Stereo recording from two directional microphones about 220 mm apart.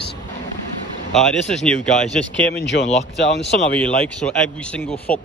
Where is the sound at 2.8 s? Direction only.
30° left (ahead or behind).